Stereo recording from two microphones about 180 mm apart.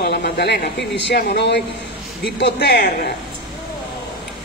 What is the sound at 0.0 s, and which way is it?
Speech, 70° left (ahead or behind).